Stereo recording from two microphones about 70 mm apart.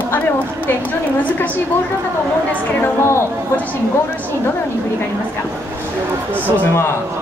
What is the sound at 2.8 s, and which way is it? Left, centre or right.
Speech, left.